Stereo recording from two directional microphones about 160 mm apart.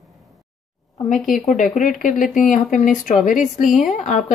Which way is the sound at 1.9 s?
55° left (ahead or behind).